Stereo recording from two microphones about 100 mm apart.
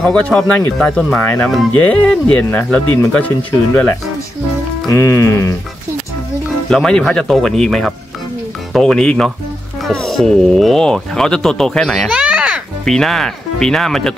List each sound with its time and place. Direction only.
0.0 s speech: 5° left (ahead or behind)
4.8 s music: 30° left (ahead or behind)
6.7 s speech: 5° left (ahead or behind)
12.1 s a sound: 10° right (ahead or behind)
12.8 s speech: 5° left (ahead or behind)